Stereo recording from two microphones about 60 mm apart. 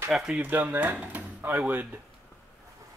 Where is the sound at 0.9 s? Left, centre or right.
Right.